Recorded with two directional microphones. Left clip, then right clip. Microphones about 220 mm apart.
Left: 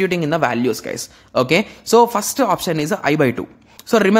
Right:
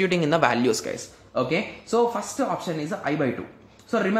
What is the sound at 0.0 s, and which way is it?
Speech, 25° left (ahead or behind).